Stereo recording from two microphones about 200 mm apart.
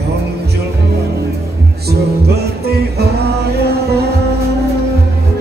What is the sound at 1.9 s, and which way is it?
Music, 55° right (ahead or behind).